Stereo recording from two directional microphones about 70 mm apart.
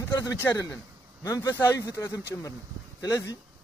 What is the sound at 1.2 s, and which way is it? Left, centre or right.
Speech, left.